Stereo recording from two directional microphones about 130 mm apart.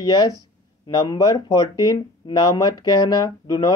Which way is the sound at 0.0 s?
30° left (ahead or behind).